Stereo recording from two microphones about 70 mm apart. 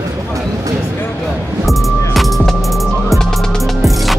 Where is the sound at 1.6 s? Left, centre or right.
Centre.